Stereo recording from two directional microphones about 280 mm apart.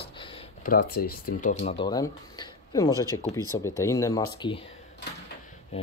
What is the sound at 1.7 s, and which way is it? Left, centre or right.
Speech, centre.